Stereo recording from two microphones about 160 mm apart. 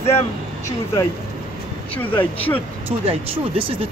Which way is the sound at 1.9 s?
10° left (ahead or behind).